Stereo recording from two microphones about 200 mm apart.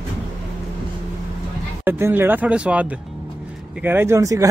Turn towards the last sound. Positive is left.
turn(degrees=-15)  # may be behind; listen again after turning